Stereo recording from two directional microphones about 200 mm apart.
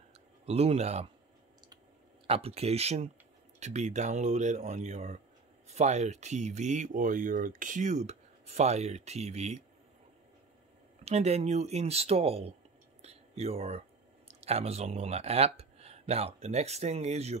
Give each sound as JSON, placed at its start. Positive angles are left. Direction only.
{"t": 0.1, "sound": "speech", "side_deg": -30}
{"t": 2.2, "sound": "speech", "side_deg": -30}
{"t": 11.1, "sound": "speech", "side_deg": -30}